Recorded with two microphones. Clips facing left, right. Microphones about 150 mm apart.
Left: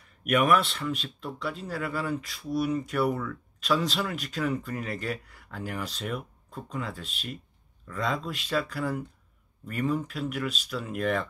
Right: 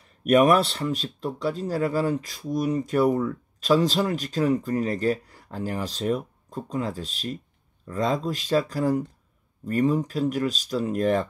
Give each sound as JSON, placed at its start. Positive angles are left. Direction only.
{"t": 0.2, "sound": "speech", "side_deg": -35}